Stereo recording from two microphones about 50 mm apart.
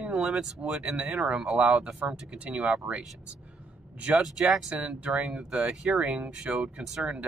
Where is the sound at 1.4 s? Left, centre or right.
Centre.